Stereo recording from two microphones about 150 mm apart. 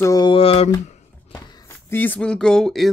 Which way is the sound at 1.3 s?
25° left (ahead or behind).